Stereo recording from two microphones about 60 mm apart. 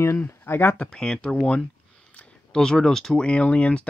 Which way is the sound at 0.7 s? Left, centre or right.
Centre.